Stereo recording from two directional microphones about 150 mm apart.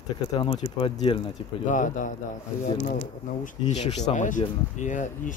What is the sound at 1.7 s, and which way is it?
Speech, 60° left (ahead or behind).